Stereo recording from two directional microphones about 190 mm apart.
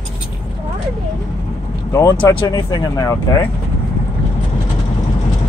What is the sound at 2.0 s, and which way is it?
Speech, 20° left (ahead or behind).